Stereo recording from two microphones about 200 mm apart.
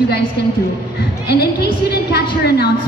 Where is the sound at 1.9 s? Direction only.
55° left (ahead or behind).